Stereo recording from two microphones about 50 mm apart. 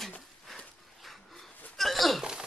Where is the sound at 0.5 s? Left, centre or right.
Centre.